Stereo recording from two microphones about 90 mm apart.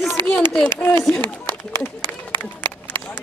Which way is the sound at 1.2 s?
55° right (ahead or behind).